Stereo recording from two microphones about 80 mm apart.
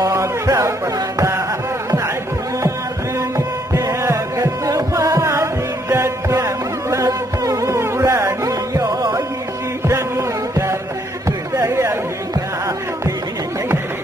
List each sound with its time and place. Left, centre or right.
0.0 s music: right
3.2 s music: right
9.8 s music: right
11.2 s a sound: right